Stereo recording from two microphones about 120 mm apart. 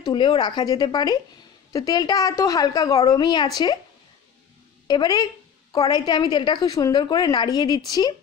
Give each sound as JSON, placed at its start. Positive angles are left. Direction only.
{"t": 0.0, "sound": "a woman's voice", "side_deg": 40}
{"t": 4.8, "sound": "a woman's voice", "side_deg": 35}